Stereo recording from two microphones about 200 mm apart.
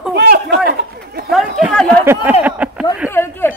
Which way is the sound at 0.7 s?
50° right (ahead or behind).